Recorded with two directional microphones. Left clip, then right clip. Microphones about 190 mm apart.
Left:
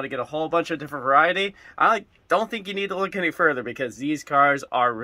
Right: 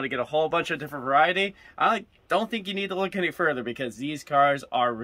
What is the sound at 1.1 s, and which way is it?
Speech, 20° right (ahead or behind).